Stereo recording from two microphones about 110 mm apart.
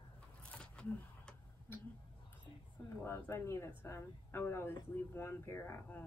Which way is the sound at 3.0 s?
25° left (ahead or behind).